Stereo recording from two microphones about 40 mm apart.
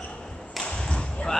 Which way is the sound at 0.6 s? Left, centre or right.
Left.